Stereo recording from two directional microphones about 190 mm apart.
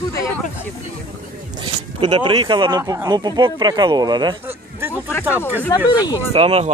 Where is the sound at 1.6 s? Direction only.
25° right (ahead or behind).